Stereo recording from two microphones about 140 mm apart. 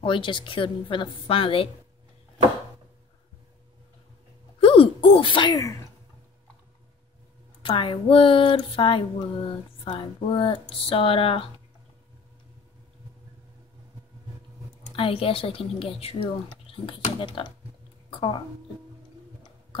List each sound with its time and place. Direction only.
0.0 s speech: 35° left (ahead or behind)
4.6 s sneeze: 40° left (ahead or behind); by 5.8 s 25° left (ahead or behind)
7.6 s speech: 35° left (ahead or behind)
15.0 s speech: 40° left (ahead or behind)